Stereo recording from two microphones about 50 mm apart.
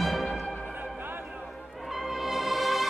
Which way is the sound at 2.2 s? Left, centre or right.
Centre.